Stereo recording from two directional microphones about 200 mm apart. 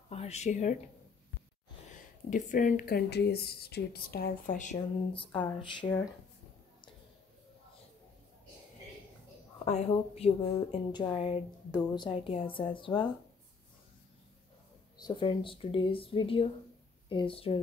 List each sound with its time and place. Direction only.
0.1 s speech: 35° left (ahead or behind)
2.2 s speech: 40° left (ahead or behind)
5.1 s speech: 25° left (ahead or behind)
9.7 s speech: 30° left (ahead or behind)
15.0 s speech: 20° left (ahead or behind)